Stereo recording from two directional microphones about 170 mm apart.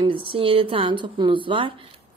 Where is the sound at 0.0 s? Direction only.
30° right (ahead or behind).